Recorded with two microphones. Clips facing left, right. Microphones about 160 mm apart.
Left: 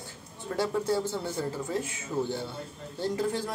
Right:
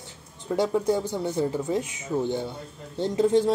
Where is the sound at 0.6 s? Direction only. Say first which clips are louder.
Right 4 dB; 20° right (ahead or behind).